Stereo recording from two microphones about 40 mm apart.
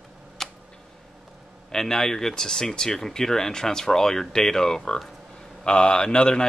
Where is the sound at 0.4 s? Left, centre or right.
Centre.